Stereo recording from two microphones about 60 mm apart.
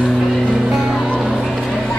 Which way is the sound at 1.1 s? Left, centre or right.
Centre.